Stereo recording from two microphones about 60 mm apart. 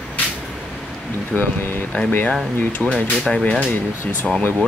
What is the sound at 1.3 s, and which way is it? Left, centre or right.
Speech, centre.